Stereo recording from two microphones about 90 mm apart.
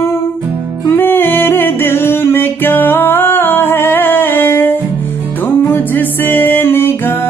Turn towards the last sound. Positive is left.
turn(degrees=25)  # may be behind; listen again after turning